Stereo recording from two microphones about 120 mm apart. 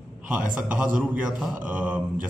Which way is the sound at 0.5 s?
10° right (ahead or behind).